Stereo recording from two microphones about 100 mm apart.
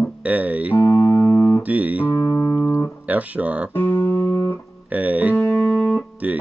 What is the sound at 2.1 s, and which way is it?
Music, 35° left (ahead or behind).